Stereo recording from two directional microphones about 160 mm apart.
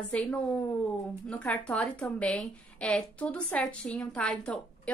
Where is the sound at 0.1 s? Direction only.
10° left (ahead or behind).